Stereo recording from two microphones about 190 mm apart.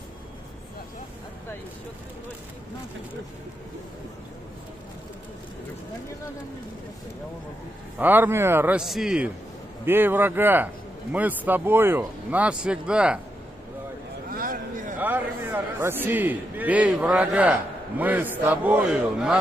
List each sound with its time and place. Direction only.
8.0 s a man's voice: 10° right (ahead or behind)
14.3 s a sound: 45° right (ahead or behind)
15.0 s a man's voice: 10° right (ahead or behind)